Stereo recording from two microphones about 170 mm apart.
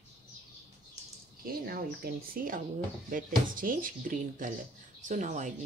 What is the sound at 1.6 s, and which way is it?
Speech, 60° right (ahead or behind).